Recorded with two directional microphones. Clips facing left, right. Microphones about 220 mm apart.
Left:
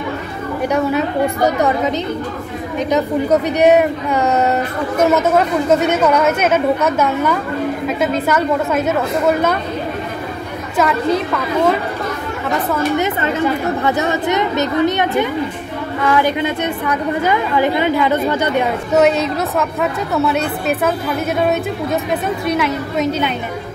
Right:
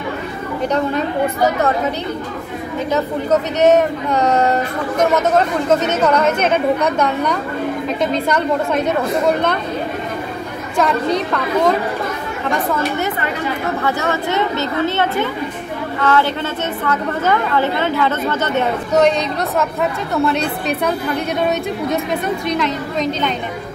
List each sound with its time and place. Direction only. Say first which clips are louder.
0.7 s speech: left 2 dB; 10° left (ahead or behind)
2.9 s a woman's voice: left 2 dB; 10° left (ahead or behind)
10.8 s a woman's voice: left 1 dB; 5° left (ahead or behind)
13.8 s a woman's voice: left 3 dB; 20° left (ahead or behind)